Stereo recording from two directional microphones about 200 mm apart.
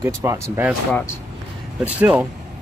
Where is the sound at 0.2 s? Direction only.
15° right (ahead or behind).